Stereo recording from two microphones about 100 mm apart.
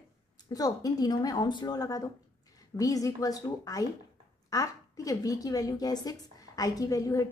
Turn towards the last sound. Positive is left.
turn(degrees=35)  # may be behind; listen again after turning